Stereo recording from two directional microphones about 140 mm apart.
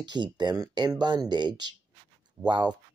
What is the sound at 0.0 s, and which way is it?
Speech, 30° right (ahead or behind).